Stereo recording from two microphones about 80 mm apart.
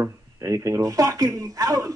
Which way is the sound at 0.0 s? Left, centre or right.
Right.